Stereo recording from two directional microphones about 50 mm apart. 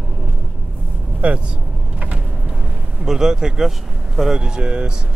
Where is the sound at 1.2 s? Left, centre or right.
Right.